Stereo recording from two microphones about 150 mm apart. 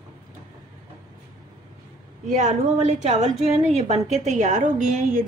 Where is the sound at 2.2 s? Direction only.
55° right (ahead or behind).